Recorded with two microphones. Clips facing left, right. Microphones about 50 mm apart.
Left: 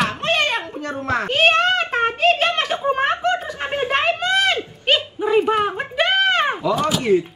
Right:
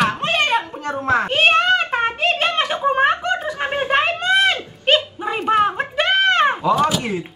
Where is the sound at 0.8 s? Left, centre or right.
Centre.